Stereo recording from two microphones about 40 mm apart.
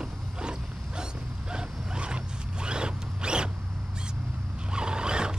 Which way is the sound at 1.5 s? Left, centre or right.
Right.